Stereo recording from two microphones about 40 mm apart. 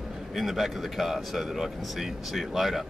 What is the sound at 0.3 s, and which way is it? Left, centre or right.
A man's voice, centre.